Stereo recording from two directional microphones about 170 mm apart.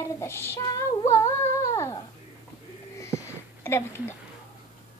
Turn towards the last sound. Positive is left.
turn(degrees=15)  # may be behind; listen again after turning